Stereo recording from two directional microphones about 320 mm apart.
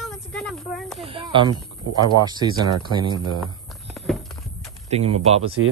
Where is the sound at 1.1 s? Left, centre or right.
Centre.